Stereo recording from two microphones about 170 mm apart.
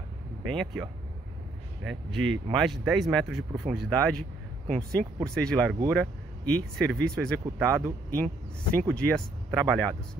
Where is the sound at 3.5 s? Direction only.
15° right (ahead or behind).